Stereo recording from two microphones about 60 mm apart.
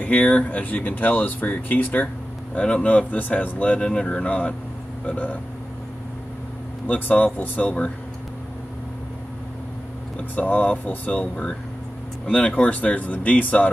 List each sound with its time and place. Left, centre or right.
0.0 s speech: left
5.0 s speech: left
6.9 s speech: left
10.3 s speech: left
12.3 s speech: centre